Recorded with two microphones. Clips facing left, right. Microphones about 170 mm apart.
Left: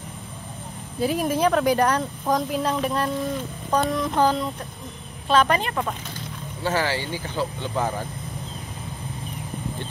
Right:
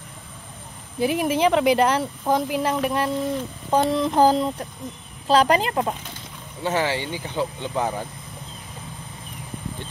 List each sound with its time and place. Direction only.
0.9 s speech: centre (ahead or behind)
3.7 s a sound: 30° right (ahead or behind)
5.3 s speech: 30° right (ahead or behind)